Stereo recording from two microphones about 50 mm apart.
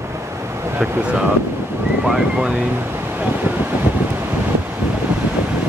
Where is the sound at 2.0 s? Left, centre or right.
Centre.